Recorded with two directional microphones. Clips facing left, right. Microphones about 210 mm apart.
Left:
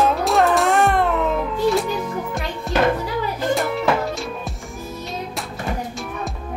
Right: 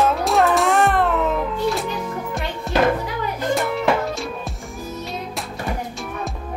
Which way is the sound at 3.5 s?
Centre (ahead or behind).